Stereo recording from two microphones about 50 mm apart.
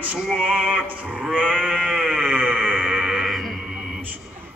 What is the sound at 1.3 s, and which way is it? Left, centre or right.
Sheep, centre.